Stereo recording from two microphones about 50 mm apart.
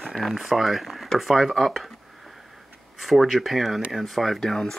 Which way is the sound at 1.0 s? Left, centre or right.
Centre.